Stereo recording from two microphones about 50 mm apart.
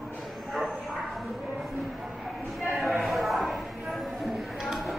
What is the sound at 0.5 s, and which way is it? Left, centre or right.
Bow-wow, centre.